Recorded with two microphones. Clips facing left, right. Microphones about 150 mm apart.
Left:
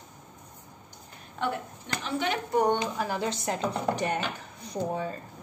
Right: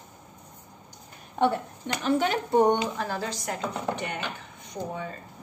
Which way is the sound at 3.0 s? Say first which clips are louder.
Left 1 dB; 10° left (ahead or behind).